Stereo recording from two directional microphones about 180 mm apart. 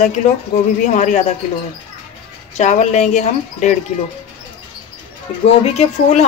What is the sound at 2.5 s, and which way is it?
Speech, 40° left (ahead or behind).